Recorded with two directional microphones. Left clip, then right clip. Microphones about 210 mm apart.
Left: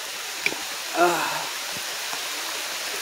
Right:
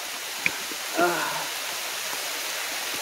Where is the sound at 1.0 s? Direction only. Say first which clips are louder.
Left 3 dB; 20° left (ahead or behind).